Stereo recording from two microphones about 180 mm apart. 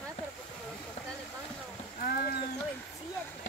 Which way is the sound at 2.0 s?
60° left (ahead or behind).